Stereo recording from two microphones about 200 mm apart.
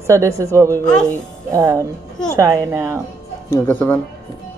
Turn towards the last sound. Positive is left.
turn(degrees=10)  # may be behind; listen again after turning